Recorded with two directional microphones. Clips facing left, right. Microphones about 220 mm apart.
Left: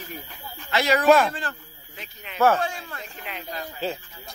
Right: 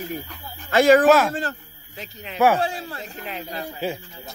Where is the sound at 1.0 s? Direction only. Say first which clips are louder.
Right 1 dB; centre (ahead or behind).